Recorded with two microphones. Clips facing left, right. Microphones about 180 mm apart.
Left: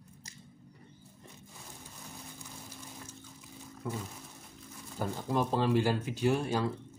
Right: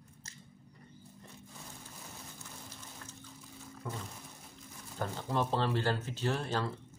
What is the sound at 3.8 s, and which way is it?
Speech, 10° left (ahead or behind).